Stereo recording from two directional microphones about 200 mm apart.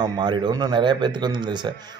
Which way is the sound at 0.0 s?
20° right (ahead or behind).